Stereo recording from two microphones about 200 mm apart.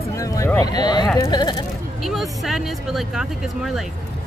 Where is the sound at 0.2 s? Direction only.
15° left (ahead or behind).